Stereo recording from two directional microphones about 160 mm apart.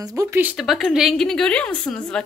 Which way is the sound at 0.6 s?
Centre (ahead or behind).